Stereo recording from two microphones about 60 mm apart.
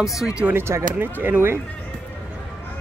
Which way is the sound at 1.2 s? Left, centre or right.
Right.